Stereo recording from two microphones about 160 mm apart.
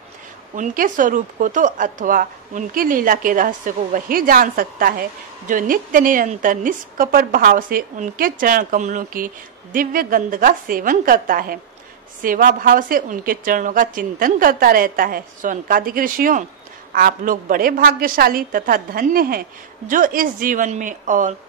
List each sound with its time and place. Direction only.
0.6 s a woman's voice: 55° right (ahead or behind)